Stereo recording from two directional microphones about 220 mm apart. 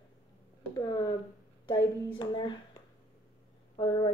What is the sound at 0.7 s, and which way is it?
Speech, 15° left (ahead or behind).